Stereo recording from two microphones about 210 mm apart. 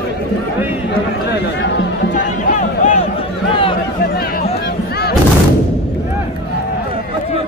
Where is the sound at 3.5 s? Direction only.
25° left (ahead or behind).